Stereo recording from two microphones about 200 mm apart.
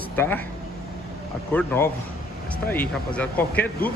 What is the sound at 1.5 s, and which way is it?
Speech, 10° left (ahead or behind).